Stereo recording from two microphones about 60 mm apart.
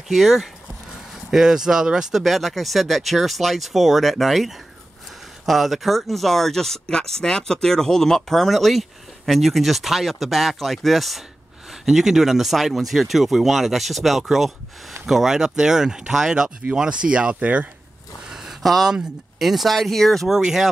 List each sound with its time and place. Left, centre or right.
0.1 s speech: centre; by 17.6 s right
18.3 s a sound: centre
19.3 s speech: centre